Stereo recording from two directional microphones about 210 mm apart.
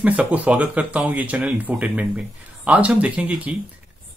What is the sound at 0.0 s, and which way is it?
Speech, 5° right (ahead or behind).